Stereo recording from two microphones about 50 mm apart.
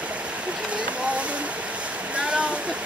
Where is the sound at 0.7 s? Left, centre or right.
Right.